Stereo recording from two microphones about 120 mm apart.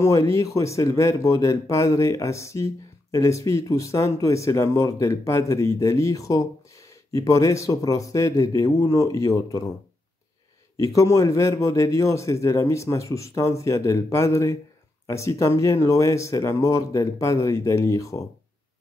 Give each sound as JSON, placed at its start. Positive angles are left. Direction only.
{"t": 0.0, "sound": "speech", "side_deg": 25}
{"t": 11.0, "sound": "speech", "side_deg": 25}